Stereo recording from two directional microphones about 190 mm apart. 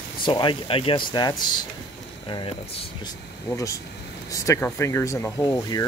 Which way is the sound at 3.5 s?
15° left (ahead or behind).